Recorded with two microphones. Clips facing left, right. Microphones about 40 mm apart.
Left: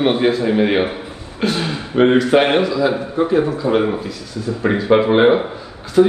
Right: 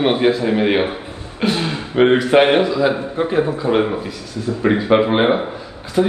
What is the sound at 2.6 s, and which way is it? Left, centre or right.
Speech, right.